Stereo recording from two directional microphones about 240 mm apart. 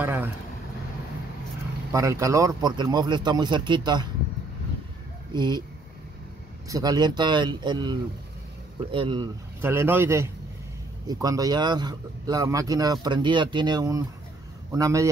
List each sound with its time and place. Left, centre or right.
0.0 s speech: centre
1.9 s speech: centre
5.3 s speech: centre
6.7 s speech: centre